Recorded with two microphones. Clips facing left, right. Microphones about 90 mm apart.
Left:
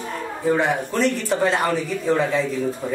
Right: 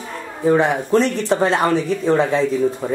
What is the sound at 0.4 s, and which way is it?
A woman's voice, 20° right (ahead or behind).